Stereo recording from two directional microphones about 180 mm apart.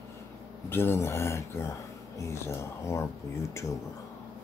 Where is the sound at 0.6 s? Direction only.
10° left (ahead or behind).